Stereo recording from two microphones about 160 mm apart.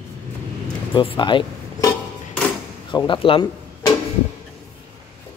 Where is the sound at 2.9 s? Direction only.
30° left (ahead or behind).